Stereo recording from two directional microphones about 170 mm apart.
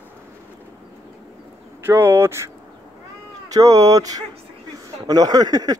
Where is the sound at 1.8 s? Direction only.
15° right (ahead or behind).